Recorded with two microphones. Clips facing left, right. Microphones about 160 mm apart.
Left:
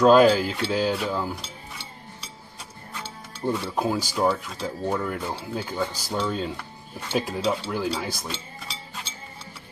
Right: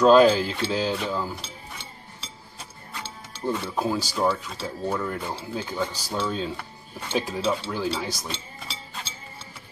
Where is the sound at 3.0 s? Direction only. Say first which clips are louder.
Left 1 dB; 15° left (ahead or behind).